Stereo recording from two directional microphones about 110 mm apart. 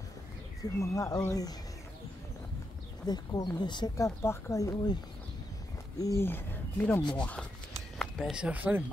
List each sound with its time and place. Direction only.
0.7 s speech: 30° left (ahead or behind)
3.1 s speech: 40° left (ahead or behind)
3.9 s speech: 25° left (ahead or behind)
5.9 s speech: 25° left (ahead or behind); by 7.4 s 10° left (ahead or behind)
8.0 s speech: 5° right (ahead or behind)